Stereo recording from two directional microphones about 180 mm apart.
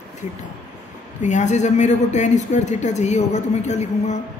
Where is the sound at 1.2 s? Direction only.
40° left (ahead or behind).